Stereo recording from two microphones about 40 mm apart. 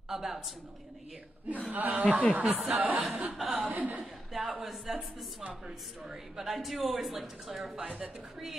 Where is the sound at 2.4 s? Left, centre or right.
Centre.